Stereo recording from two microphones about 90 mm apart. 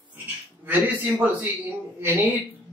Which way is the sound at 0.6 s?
20° right (ahead or behind).